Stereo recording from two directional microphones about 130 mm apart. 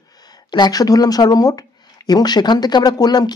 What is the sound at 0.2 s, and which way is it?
Speech, 30° left (ahead or behind).